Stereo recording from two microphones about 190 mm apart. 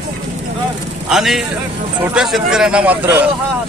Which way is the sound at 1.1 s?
Centre (ahead or behind).